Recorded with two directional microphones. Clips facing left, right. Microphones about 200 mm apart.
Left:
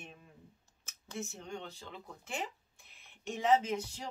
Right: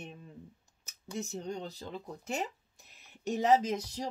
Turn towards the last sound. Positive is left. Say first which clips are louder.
# right 3 dB
turn(degrees=-40)  # may be behind; listen again after turning